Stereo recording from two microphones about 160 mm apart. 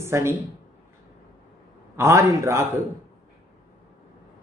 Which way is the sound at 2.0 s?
20° right (ahead or behind).